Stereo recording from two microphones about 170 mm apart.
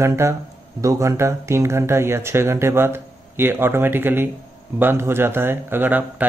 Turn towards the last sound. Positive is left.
turn(degrees=-10)  # may be behind; listen again after turning